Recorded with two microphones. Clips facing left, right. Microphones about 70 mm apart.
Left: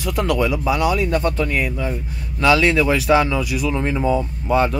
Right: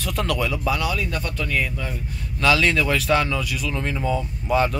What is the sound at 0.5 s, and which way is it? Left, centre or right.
Speech, left.